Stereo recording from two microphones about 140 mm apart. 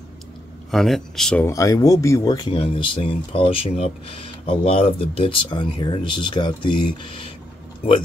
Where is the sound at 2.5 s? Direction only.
40° left (ahead or behind).